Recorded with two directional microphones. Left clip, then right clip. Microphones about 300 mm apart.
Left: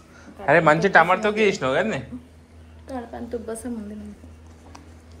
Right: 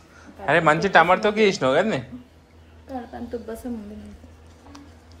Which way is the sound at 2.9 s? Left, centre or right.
Centre.